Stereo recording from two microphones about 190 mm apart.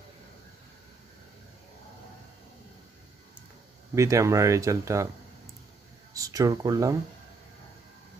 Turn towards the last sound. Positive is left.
turn(degrees=-20)  # may be behind; listen again after turning